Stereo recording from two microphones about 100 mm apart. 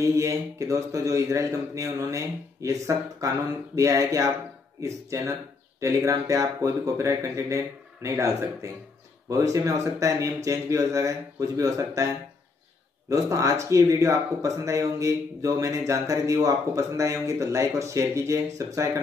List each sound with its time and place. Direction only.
0.0 s speech: 30° right (ahead or behind)
13.1 s speech: 35° right (ahead or behind)